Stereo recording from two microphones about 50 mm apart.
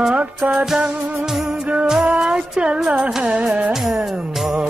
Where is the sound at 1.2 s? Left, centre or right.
Centre.